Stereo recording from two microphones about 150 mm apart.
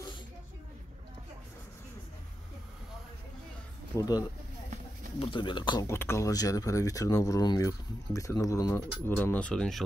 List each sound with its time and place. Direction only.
3.9 s speech: 20° left (ahead or behind)
5.2 s speech: 35° left (ahead or behind)
5.9 s speech: 20° left (ahead or behind)